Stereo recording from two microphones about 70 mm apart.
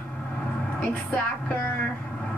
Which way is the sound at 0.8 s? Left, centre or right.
Left.